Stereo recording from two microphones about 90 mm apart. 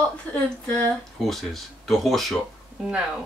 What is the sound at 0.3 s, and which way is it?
Speech, 20° left (ahead or behind).